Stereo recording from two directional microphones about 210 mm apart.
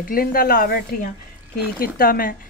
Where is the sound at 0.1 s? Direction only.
45° left (ahead or behind).